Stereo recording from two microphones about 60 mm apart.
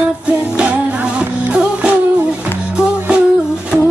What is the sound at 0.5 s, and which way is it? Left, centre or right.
Music, centre.